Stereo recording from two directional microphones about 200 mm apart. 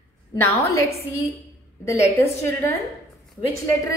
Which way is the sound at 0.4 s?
15° left (ahead or behind).